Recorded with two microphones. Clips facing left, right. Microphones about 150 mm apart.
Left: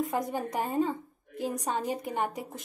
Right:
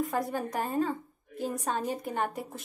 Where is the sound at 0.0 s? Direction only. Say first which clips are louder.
Even; 20° left (ahead or behind).